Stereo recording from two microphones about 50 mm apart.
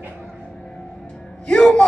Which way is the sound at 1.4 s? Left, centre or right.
Centre.